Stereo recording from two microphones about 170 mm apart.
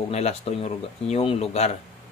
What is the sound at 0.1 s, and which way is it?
Speech, 40° left (ahead or behind).